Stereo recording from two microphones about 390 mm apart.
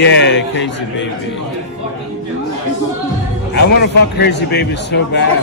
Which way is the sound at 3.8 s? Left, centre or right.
Left.